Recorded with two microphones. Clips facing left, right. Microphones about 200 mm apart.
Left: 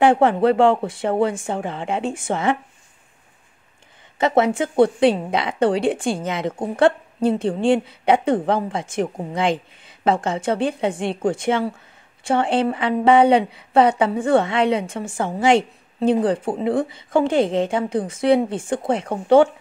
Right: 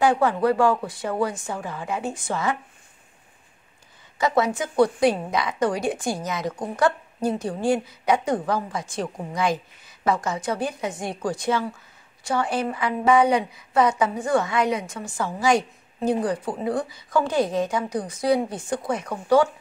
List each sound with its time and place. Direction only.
0.0 s a woman's voice: 25° left (ahead or behind)
4.2 s a woman's voice: 25° left (ahead or behind)